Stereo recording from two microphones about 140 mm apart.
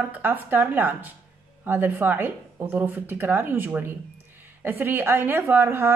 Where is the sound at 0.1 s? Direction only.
15° right (ahead or behind).